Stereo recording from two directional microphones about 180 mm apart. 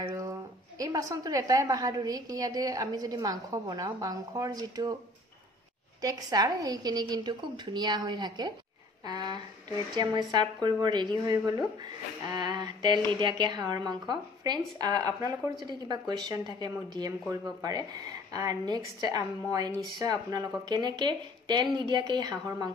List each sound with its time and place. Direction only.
0.0 s a woman's voice: 20° right (ahead or behind)
5.9 s a woman's voice: 20° right (ahead or behind)